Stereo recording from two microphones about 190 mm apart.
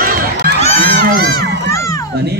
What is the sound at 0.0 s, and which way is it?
Crowd, 50° right (ahead or behind).